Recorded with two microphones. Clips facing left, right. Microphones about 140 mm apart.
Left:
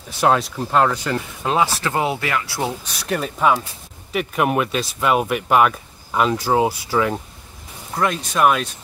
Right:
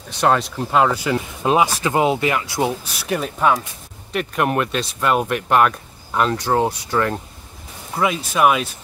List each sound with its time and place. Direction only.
0.2 s speech: centre (ahead or behind); by 2.9 s 20° right (ahead or behind)
3.1 s speech: centre (ahead or behind)